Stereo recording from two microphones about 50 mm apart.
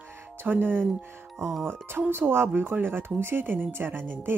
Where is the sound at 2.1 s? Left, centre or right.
Right.